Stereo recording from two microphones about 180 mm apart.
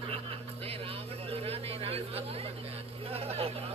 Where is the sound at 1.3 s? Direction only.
35° right (ahead or behind).